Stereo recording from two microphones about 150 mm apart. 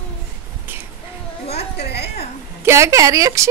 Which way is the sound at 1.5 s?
90° left.